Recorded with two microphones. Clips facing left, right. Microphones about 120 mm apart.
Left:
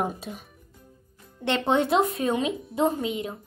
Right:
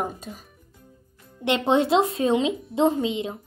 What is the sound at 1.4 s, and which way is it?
Speech, 20° right (ahead or behind).